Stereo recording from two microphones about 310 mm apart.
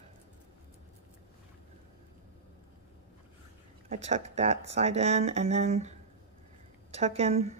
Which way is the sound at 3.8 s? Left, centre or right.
Right.